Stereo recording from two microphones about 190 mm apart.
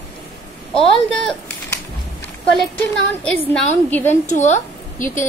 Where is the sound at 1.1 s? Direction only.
5° left (ahead or behind).